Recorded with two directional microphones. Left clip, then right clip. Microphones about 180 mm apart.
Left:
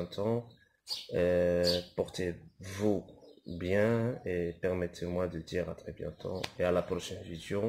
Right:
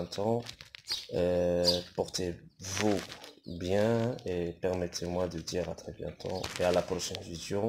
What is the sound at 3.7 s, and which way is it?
Speech, 30° left (ahead or behind).